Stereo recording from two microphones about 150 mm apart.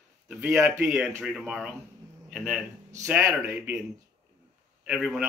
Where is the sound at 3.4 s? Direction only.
10° right (ahead or behind).